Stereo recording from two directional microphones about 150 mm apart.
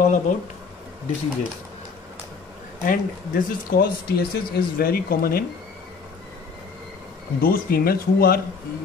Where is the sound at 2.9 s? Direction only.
70° left (ahead or behind).